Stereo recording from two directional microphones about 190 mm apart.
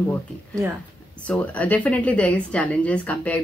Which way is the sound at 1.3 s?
5° left (ahead or behind).